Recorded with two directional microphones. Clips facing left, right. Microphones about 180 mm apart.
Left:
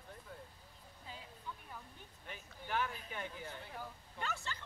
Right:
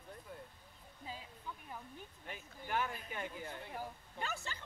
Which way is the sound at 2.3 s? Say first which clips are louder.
Right 1 dB; 10° right (ahead or behind).